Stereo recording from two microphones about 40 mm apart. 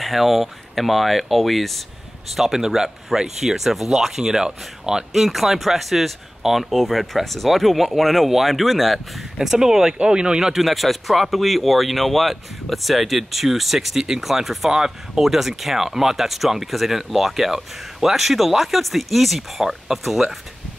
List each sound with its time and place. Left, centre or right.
0.0 s speech: centre
2.3 s speech: centre
5.1 s speech: centre; by 10.5 s right
10.5 s speech: centre